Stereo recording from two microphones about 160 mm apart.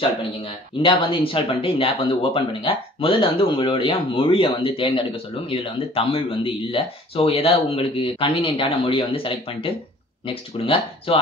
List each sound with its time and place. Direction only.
0.8 s speech: 35° left (ahead or behind)